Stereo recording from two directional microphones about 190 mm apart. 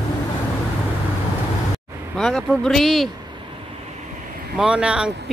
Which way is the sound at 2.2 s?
Centre (ahead or behind).